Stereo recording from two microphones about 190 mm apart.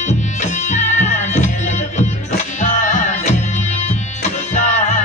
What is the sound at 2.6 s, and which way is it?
Music, 40° left (ahead or behind).